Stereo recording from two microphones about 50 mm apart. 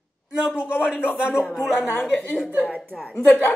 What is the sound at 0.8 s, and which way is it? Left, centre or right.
Speech, centre.